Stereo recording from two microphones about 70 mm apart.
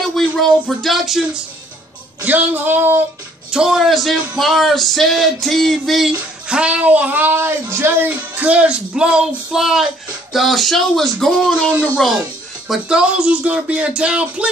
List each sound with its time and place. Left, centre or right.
0.0 s speech: centre
2.2 s speech: right
3.5 s speech: centre
6.5 s speech: centre; by 8.1 s right
8.1 s speech: right; by 11.5 s centre
12.8 s speech: centre